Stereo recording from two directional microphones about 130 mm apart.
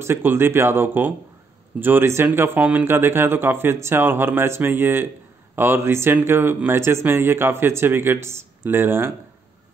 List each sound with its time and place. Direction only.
0.0 s speech: 15° right (ahead or behind)